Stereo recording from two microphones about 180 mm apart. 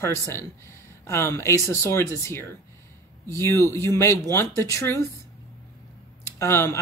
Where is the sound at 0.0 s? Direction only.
15° left (ahead or behind).